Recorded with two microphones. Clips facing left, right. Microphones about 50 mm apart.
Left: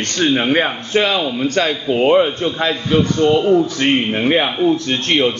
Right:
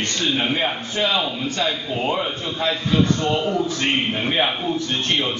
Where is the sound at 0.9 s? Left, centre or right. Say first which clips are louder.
Left 7 dB; left.